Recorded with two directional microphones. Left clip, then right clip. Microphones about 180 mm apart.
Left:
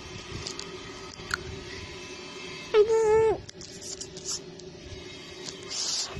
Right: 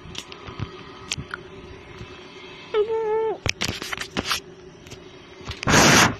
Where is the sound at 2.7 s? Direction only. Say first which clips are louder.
Left 1 dB; 25° left (ahead or behind).